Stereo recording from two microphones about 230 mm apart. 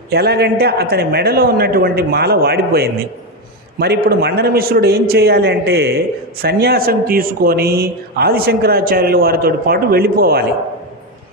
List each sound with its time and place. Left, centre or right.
0.1 s a man's voice: right